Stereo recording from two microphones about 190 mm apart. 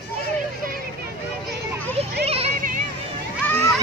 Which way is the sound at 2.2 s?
30° right (ahead or behind).